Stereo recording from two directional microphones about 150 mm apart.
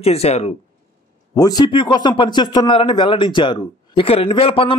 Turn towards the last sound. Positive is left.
turn(degrees=35)  # may be behind; listen again after turning